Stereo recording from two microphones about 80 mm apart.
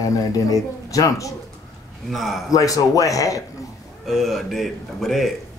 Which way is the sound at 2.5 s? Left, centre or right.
Left.